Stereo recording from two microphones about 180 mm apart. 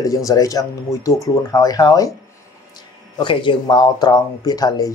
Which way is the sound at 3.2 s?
25° left (ahead or behind).